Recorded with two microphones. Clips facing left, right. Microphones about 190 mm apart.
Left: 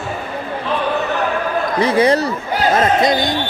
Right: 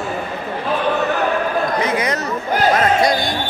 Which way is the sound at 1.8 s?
30° left (ahead or behind).